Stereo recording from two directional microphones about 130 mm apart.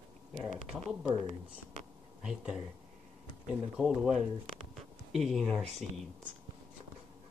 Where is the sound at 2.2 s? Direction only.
5° right (ahead or behind).